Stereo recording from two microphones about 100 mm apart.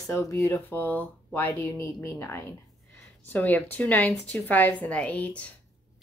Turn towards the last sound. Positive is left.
turn(degrees=10)  # may be behind; listen again after turning